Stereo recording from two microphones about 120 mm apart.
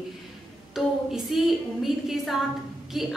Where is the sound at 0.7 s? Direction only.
5° right (ahead or behind).